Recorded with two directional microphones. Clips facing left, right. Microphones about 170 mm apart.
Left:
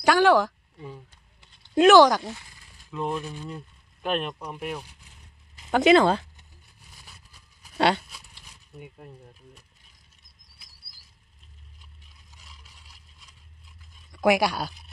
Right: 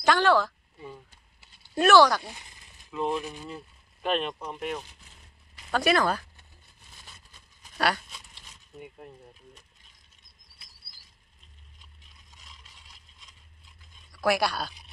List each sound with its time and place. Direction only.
0.0 s speech: 10° left (ahead or behind)
0.7 s clip-clop: 5° right (ahead or behind)
1.8 s speech: 15° left (ahead or behind)
2.2 s a sound: 20° right (ahead or behind)
2.9 s speech: 5° right (ahead or behind)
5.7 s speech: 20° left (ahead or behind)
7.0 s vehicle: 10° left (ahead or behind)
7.7 s speech: 25° left (ahead or behind)
8.1 s a sound: 5° left (ahead or behind)
12.4 s a sound: 5° left (ahead or behind)
14.1 s speech: 15° left (ahead or behind)